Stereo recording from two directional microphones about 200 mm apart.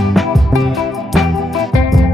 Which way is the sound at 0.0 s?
Centre (ahead or behind).